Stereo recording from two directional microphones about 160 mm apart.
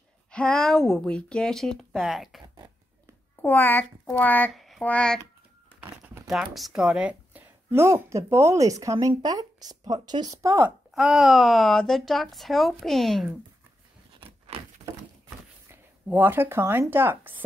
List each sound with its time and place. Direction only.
0.3 s speech: 5° left (ahead or behind)
2.4 s a sound: 25° right (ahead or behind)
3.4 s speech: 10° left (ahead or behind)
5.8 s crumpling: 15° right (ahead or behind)
6.2 s a woman's voice: centre (ahead or behind); by 10.7 s 20° right (ahead or behind)
11.0 s speech: centre (ahead or behind)
15.2 s a sound: 15° right (ahead or behind)